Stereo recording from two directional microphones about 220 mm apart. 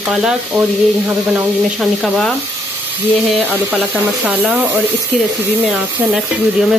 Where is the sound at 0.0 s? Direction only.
Centre (ahead or behind).